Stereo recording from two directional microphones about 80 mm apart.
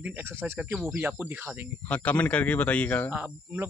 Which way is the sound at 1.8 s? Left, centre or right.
Centre.